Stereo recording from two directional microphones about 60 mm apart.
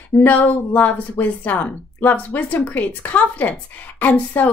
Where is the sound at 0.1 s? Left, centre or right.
Left.